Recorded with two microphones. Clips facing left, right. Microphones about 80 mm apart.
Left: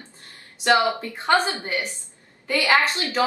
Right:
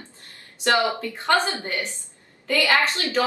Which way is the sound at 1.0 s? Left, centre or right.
Left.